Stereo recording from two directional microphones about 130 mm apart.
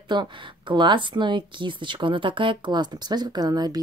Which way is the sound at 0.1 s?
35° right (ahead or behind).